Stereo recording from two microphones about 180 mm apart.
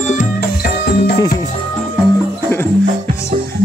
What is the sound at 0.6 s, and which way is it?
Music, 60° left (ahead or behind).